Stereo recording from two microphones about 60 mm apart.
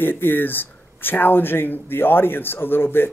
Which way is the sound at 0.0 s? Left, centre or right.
Left.